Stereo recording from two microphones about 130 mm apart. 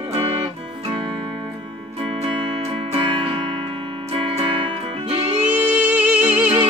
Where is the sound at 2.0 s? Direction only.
45° right (ahead or behind).